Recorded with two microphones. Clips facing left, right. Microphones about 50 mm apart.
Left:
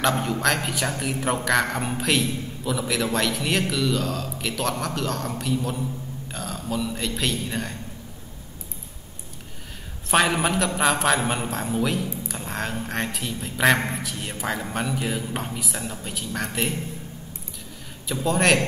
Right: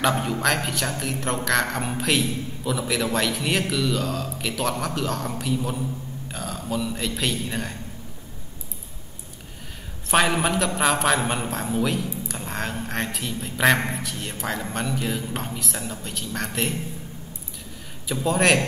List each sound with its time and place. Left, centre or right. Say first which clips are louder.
0.0 s a man's voice: even; centre
10.1 s a man's voice: even; centre
18.0 s a man's voice: right 1 dB; centre